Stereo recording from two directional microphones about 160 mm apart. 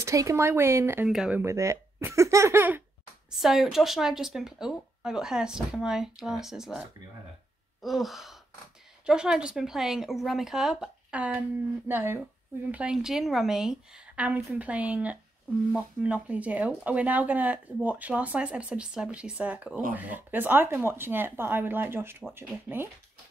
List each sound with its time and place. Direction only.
0.0 s speech: 20° right (ahead or behind)
1.0 s speech: 5° right (ahead or behind)
1.4 s speech: 20° right (ahead or behind)
3.3 s speech: centre (ahead or behind)
7.8 s speech: centre (ahead or behind)